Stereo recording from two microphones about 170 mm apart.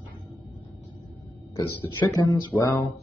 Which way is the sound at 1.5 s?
20° left (ahead or behind).